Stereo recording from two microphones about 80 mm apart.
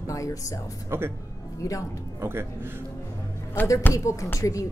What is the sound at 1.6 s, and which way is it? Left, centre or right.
Speech, left.